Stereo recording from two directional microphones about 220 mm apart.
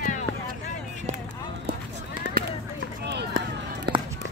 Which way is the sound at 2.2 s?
50° right (ahead or behind).